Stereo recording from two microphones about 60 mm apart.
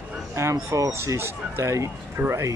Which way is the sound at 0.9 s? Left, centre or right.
Right.